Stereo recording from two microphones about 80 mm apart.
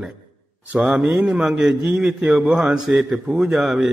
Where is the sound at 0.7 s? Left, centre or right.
Centre.